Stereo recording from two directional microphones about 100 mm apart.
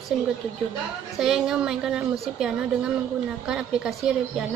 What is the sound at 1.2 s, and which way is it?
Speech, 5° right (ahead or behind).